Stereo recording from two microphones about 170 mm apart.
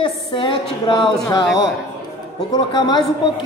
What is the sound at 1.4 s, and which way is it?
Speech, 5° right (ahead or behind).